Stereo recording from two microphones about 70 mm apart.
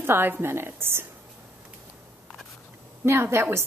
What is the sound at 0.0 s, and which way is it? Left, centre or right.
A woman's voice, right.